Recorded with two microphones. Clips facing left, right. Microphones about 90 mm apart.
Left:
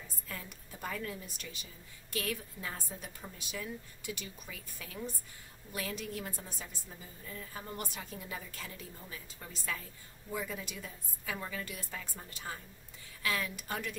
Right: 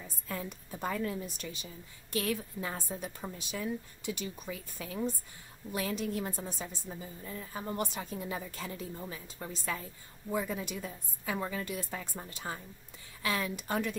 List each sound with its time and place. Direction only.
0.3 s a woman's voice: 30° right (ahead or behind)